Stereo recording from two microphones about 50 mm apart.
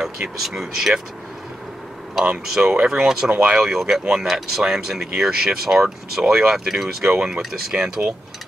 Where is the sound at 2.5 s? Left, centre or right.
Centre.